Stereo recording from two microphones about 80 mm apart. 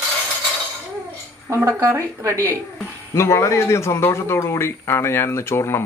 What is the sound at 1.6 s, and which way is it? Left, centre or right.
Speech, right.